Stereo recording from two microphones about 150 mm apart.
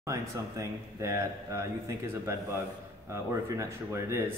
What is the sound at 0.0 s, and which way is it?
A man's voice, 20° right (ahead or behind).